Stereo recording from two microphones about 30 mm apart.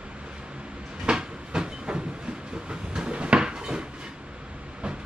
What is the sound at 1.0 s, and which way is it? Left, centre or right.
Train, right.